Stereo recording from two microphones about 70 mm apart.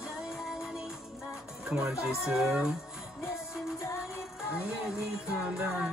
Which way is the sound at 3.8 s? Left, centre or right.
Left.